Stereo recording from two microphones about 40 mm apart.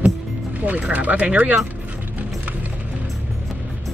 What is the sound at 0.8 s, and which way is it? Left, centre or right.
Speech, right.